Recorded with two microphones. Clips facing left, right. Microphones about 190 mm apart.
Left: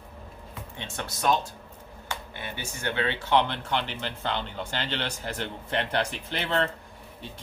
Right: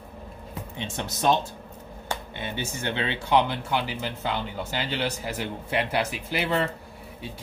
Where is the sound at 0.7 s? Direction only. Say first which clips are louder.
Right 4 dB; 20° right (ahead or behind).